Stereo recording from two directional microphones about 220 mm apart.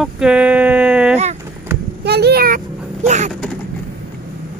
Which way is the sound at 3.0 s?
30° right (ahead or behind).